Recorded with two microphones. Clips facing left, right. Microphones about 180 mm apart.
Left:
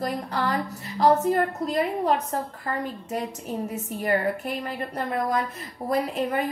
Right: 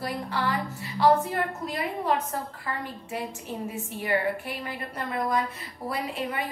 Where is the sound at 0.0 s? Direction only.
45° left (ahead or behind).